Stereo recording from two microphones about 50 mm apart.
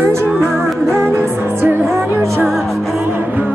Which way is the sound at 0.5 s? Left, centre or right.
Centre.